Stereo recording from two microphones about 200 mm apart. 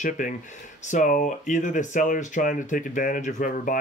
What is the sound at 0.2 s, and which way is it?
Speech, 40° left (ahead or behind).